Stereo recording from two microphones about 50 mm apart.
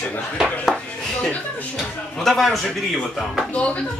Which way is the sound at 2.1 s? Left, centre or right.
Centre.